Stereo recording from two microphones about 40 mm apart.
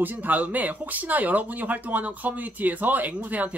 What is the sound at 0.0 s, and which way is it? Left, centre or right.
Speech, right.